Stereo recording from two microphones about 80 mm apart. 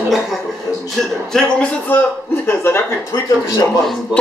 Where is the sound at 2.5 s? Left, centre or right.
Left.